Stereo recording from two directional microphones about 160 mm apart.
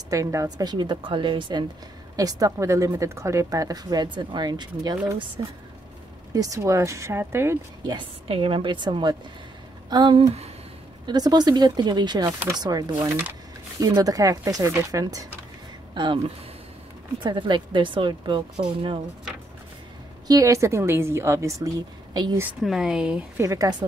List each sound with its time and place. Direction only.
0.1 s a woman's voice: 20° right (ahead or behind)
7.8 s a woman's voice: 30° right (ahead or behind)
17.2 s speech: 30° right (ahead or behind)
20.2 s a woman's voice: 20° right (ahead or behind)
22.6 s speech: centre (ahead or behind)
23.4 s a woman's voice: 20° right (ahead or behind)